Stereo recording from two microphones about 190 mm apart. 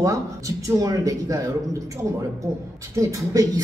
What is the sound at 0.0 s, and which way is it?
A woman's voice, 15° right (ahead or behind).